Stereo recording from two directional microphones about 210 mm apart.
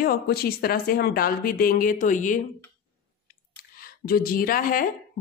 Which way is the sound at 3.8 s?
45° left (ahead or behind).